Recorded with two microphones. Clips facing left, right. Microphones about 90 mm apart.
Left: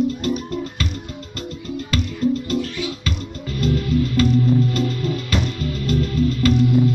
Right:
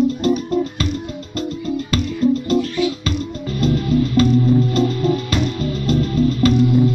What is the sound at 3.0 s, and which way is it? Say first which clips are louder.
Music: right 5 dB; 30° right (ahead or behind).